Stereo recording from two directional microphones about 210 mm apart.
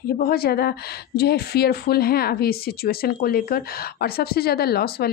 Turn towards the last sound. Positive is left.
turn(degrees=50)  # may be behind; listen again after turning